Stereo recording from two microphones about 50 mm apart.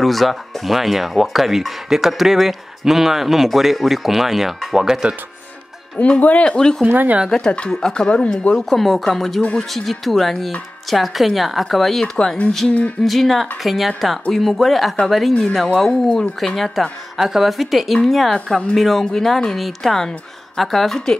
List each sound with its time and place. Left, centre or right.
0.0 s speech: centre
5.0 s speech: right
5.9 s speech: left
6.9 s speech: right
7.2 s speech: centre
8.6 s speech: centre
12.6 s speech: left
13.0 s speech: centre
15.8 s speech: centre
16.3 s speech: centre